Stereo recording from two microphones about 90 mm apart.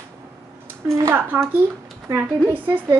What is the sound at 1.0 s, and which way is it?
Speech, 25° right (ahead or behind).